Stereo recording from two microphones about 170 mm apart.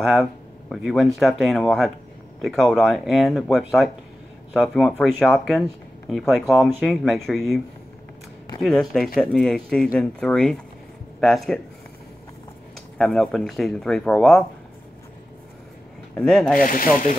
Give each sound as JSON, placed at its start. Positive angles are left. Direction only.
{"t": 0.0, "sound": "speech", "side_deg": 0}
{"t": 12.9, "sound": "speech", "side_deg": 5}
{"t": 16.2, "sound": "speech", "side_deg": 5}
{"t": 16.5, "sound": "speech", "side_deg": 55}